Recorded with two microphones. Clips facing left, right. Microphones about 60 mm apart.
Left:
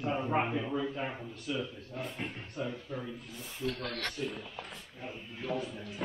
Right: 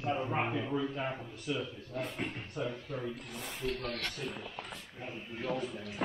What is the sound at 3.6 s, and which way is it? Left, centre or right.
Speech, right.